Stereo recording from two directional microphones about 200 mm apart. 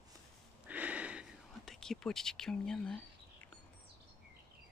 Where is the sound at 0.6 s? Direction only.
5° right (ahead or behind).